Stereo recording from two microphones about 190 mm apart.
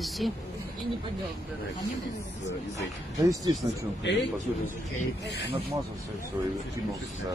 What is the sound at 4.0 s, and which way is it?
Speech, 65° left (ahead or behind).